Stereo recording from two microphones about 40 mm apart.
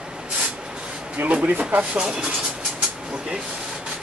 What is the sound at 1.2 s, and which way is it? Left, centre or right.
Speech, right.